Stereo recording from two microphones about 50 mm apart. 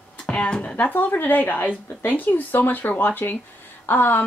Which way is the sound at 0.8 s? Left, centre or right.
Left.